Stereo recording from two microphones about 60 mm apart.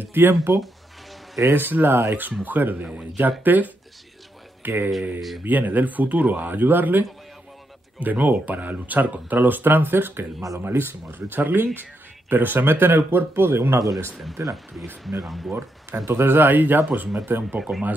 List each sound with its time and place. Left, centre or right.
0.1 s speech: right
1.5 s speech: right
13.7 s speech: right
14.4 s speech: right
15.2 s speech: centre
16.1 s speech: right
17.6 s speech: centre